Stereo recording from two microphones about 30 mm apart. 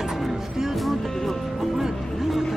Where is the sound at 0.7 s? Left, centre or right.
Centre.